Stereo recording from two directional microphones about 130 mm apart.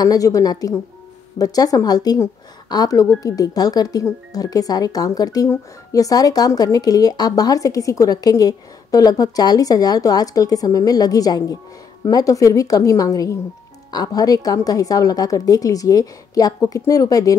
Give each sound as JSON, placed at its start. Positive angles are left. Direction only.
{"t": 0.0, "sound": "speech", "side_deg": 25}